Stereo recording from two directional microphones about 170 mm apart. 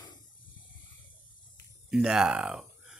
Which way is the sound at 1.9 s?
5° right (ahead or behind).